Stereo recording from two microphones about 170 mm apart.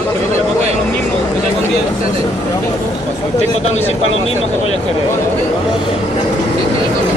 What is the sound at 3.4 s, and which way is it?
Speech, 40° left (ahead or behind).